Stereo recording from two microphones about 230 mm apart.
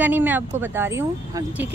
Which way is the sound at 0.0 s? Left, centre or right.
Centre.